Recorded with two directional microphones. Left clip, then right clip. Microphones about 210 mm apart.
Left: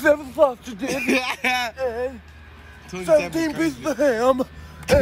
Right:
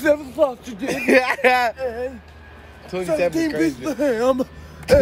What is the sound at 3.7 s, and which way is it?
Speech, centre (ahead or behind).